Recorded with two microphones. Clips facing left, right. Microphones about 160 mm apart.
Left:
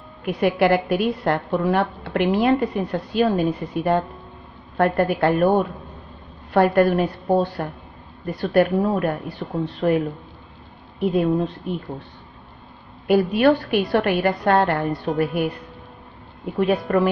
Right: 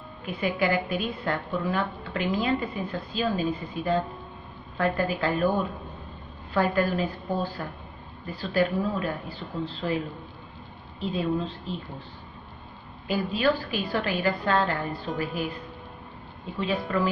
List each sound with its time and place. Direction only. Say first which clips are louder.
0.2 s a woman's voice: left 8 dB; 70° left (ahead or behind)
13.0 s a woman's voice: left 8 dB; 65° left (ahead or behind)
16.4 s a woman's voice: left 8 dB; 65° left (ahead or behind)